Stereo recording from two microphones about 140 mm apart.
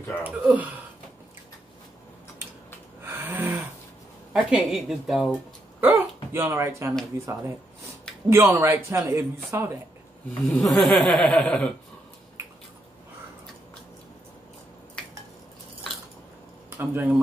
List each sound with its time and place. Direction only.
0.2 s speech: 10° right (ahead or behind)
3.0 s snoring: 15° right (ahead or behind)
4.3 s speech: 5° right (ahead or behind)
5.8 s a sound: 15° right (ahead or behind)
6.3 s a man's voice: 15° right (ahead or behind)
10.5 s speech: centre (ahead or behind)
16.7 s speech: 15° right (ahead or behind)